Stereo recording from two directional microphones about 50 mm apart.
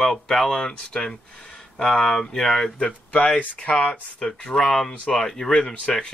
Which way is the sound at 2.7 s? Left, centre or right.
Left.